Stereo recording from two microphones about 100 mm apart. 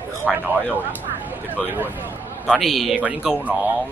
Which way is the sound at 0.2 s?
15° right (ahead or behind).